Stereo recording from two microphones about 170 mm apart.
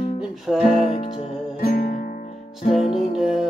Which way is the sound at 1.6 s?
50° left (ahead or behind).